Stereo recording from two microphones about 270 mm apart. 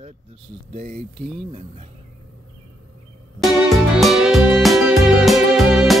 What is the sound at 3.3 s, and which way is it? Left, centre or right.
Music, centre.